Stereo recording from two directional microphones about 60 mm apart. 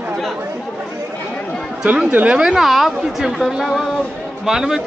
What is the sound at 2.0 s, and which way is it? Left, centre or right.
Speech, right.